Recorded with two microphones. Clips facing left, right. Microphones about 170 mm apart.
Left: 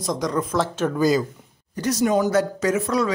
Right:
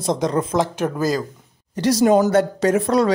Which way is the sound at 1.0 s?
Centre (ahead or behind).